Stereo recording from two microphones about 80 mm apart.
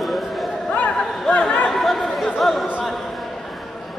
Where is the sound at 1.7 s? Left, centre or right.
Centre.